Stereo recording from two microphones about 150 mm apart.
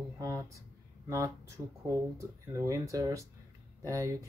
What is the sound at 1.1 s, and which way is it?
Speech, 20° right (ahead or behind).